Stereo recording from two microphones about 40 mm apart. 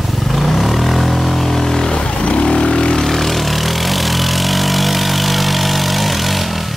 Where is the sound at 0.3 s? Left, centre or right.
Centre.